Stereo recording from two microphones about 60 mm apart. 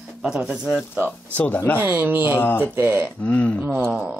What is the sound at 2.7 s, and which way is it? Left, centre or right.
Speech, right.